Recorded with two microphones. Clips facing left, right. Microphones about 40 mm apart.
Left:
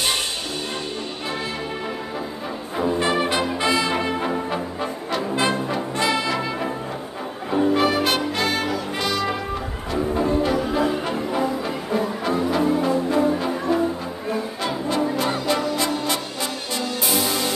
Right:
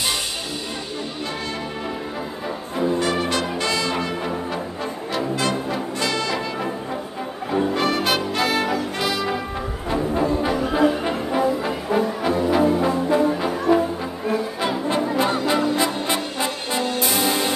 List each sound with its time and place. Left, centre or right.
3.0 s brass instrument: left
5.3 s music: left
5.9 s brass instrument: centre
7.5 s music: centre
9.0 s brass instrument: centre
10.1 s brass instrument: centre
12.3 s music: centre
14.6 s brass instrument: right
17.2 s music: right